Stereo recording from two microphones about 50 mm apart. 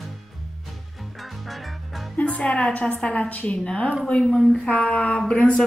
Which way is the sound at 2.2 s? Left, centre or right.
Left.